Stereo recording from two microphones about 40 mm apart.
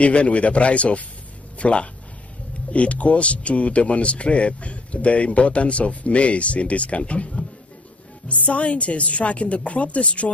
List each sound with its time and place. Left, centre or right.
0.0 s speech: left